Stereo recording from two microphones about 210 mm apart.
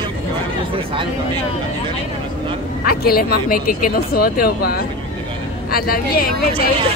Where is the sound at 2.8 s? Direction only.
45° left (ahead or behind).